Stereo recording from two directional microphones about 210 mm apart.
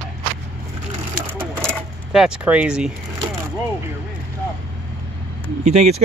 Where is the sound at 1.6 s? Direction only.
Centre (ahead or behind).